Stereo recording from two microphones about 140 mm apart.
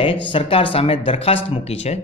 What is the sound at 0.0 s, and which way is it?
A man's voice, 40° left (ahead or behind).